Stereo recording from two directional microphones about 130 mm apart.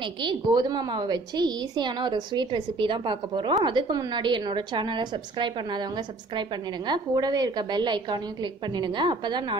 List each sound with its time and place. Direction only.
0.0 s a woman's voice: 35° right (ahead or behind)